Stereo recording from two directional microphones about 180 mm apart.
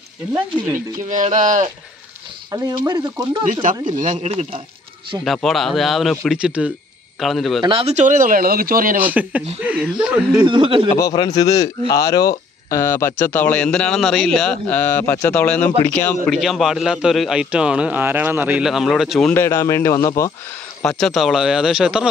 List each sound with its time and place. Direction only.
0.7 s speech: 45° right (ahead or behind)
2.5 s speech: 20° right (ahead or behind)
3.9 s speech: 45° right (ahead or behind)
5.2 s a man's voice: centre (ahead or behind)
7.6 s speech: 30° right (ahead or behind); by 9.0 s 50° right (ahead or behind)
9.0 s speech: 10° right (ahead or behind)
10.4 s speech: 30° right (ahead or behind)
11.0 s a man's voice: 20° left (ahead or behind); by 19.4 s 5° left (ahead or behind)
19.4 s speech: 15° left (ahead or behind)
20.8 s a man's voice: centre (ahead or behind)